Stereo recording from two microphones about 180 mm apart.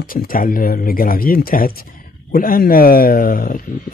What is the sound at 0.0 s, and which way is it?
Speech, 55° left (ahead or behind).